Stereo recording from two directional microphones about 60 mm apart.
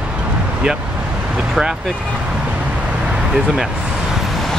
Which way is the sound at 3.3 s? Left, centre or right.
Centre.